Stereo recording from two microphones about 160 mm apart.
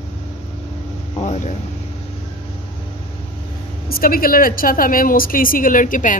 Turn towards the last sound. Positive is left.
turn(degrees=55)  # may be behind; listen again after turning